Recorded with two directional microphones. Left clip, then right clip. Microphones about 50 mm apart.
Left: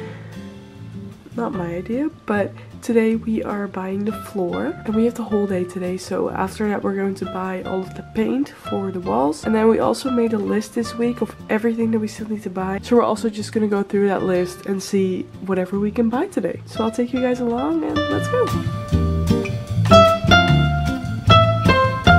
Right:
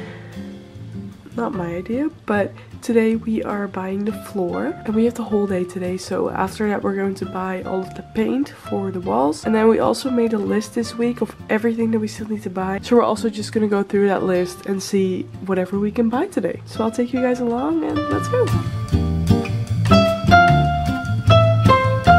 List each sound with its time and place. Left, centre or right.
1.3 s a woman's voice: centre
19.9 s music: centre